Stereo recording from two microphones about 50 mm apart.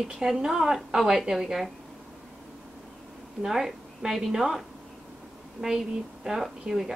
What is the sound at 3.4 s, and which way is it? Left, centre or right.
A woman's voice, centre.